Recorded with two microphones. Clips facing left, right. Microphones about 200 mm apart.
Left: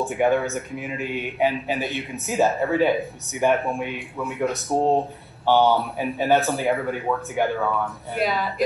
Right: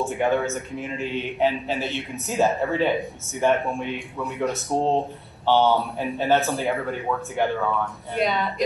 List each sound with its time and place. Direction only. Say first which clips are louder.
0.0 s a man's voice: left 2 dB; 15° left (ahead or behind)
2.1 s a man's voice: left 1 dB; centre (ahead or behind)
5.4 s a man's voice: left 1 dB; 15° left (ahead or behind)
6.4 s speech: left 2 dB; centre (ahead or behind)